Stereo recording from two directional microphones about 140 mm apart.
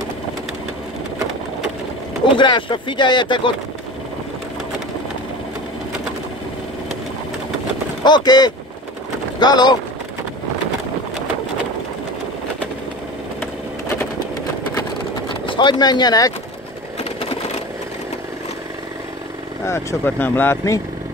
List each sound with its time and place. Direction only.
2.2 s speech: 35° left (ahead or behind)
8.0 s speech: 30° left (ahead or behind)
15.4 s speech: 35° left (ahead or behind)
19.6 s speech: 20° left (ahead or behind)